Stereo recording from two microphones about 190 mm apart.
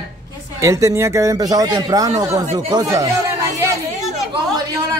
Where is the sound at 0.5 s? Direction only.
15° right (ahead or behind).